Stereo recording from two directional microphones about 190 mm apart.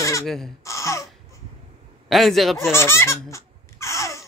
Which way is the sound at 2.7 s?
15° left (ahead or behind).